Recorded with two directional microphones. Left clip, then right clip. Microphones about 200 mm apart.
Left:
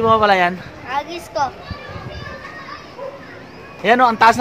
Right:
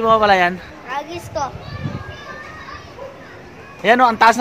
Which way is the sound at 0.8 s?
15° left (ahead or behind).